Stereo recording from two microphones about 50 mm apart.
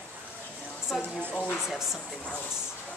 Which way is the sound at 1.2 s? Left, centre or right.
Left.